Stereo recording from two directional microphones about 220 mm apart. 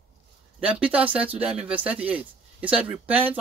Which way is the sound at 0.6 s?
5° right (ahead or behind).